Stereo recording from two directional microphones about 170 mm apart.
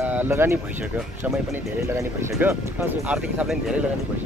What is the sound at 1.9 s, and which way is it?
Speech, 15° right (ahead or behind).